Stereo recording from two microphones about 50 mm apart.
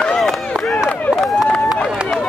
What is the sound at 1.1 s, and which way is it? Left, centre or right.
Run, centre.